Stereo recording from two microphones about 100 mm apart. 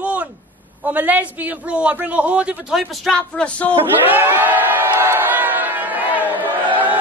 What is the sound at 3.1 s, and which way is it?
Speech, 10° left (ahead or behind).